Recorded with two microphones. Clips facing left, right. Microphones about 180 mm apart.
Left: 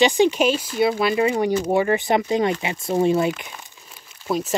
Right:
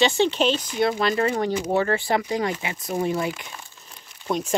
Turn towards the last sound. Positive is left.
turn(degrees=5)  # may be behind; listen again after turning